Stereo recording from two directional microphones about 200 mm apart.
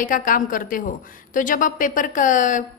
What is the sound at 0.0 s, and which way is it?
A woman's voice, 40° left (ahead or behind).